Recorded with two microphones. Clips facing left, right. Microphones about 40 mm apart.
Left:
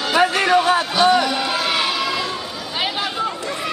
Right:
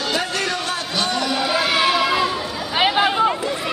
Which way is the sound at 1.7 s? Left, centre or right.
Centre.